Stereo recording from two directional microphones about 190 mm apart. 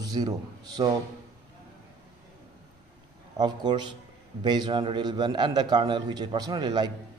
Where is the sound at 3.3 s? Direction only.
25° right (ahead or behind).